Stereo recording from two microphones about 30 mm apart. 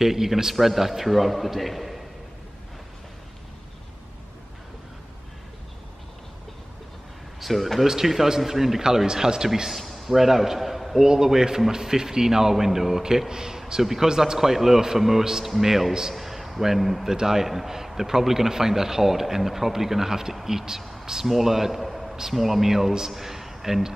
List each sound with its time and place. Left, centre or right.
0.0 s a man's voice: centre
7.3 s a sound: centre
7.8 s speech: centre
8.8 s a man's voice: right
9.7 s a man's voice: centre
11.0 s a man's voice: centre
13.3 s a man's voice: right; by 17.1 s centre
17.1 s speech: centre
21.0 s a sound: centre
21.3 s a man's voice: centre